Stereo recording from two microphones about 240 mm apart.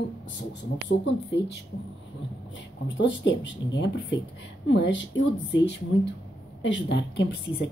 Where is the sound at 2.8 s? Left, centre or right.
Left.